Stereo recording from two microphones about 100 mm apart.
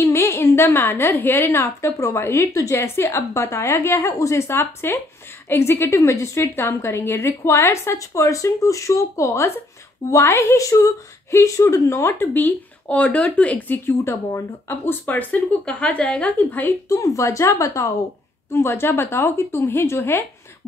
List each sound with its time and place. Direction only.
0.0 s a woman's voice: 30° left (ahead or behind)
16.9 s a woman's voice: 35° left (ahead or behind)